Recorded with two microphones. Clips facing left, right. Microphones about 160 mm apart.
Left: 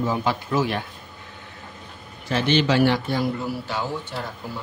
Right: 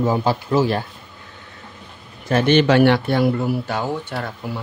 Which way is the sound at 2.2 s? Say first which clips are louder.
Right 6 dB; 50° right (ahead or behind).